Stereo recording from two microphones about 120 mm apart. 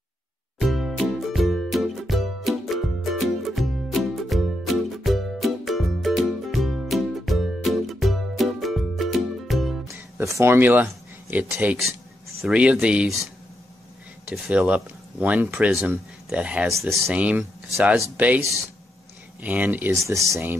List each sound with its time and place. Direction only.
0.6 s music: centre (ahead or behind)
9.8 s music: 25° right (ahead or behind)
12.4 s speech: 5° right (ahead or behind)
19.4 s speech: 15° right (ahead or behind)